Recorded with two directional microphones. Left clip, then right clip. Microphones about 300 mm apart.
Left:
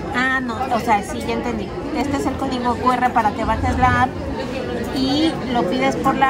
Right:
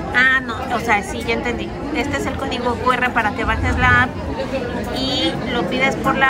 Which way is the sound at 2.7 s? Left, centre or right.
Centre.